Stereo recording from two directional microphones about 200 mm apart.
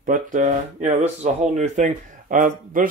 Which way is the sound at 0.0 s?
40° right (ahead or behind).